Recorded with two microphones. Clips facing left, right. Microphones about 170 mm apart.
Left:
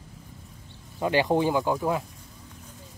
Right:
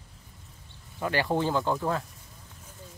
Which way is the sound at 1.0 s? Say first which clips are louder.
Left 4 dB; 20° left (ahead or behind).